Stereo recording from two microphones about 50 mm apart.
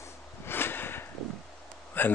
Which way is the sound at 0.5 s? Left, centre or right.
Left.